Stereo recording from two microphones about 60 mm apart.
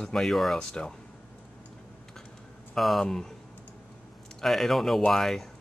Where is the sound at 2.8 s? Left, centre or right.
Centre.